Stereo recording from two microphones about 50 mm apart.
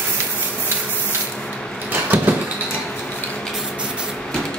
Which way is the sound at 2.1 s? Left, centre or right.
Right.